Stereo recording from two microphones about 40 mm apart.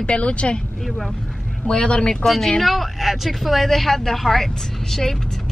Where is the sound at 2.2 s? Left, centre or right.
Centre.